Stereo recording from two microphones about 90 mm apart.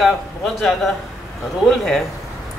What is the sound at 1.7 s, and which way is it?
Speech, 5° left (ahead or behind).